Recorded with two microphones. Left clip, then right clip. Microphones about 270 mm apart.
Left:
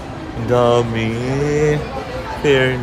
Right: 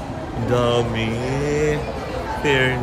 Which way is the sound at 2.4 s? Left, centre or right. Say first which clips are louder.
Left 4 dB; centre.